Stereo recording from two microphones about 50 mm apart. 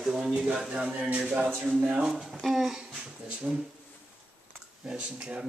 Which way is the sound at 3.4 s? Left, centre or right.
Right.